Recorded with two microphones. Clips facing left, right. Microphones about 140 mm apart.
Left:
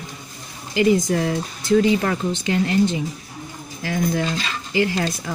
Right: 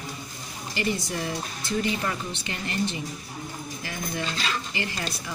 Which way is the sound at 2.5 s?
90° left.